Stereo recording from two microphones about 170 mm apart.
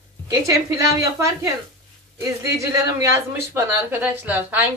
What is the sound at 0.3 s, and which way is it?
A woman's voice, 20° right (ahead or behind).